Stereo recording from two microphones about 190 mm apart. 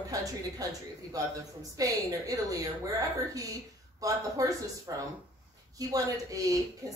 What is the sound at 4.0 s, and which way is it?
A woman's voice, 20° right (ahead or behind).